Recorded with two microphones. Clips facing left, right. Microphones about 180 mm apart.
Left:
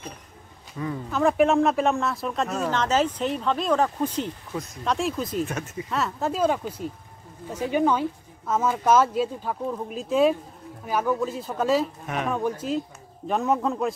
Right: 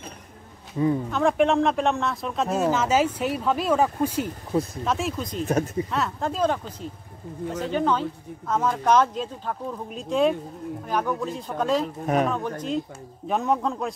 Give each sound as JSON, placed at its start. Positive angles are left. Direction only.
{"t": 1.1, "sound": "speech", "side_deg": 0}
{"t": 4.5, "sound": "speech", "side_deg": -40}
{"t": 4.8, "sound": "speech", "side_deg": 0}
{"t": 5.4, "sound": "speech", "side_deg": -35}
{"t": 5.9, "sound": "speech", "side_deg": 0}